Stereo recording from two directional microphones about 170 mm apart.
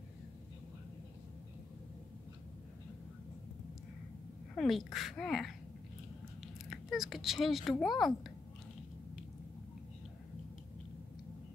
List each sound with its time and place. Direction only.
4.6 s speech: centre (ahead or behind)
6.4 s biting: centre (ahead or behind)
7.8 s speech: centre (ahead or behind)